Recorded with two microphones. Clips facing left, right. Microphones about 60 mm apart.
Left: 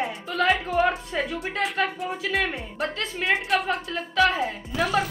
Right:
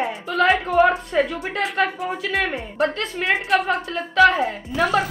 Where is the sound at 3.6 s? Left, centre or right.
Right.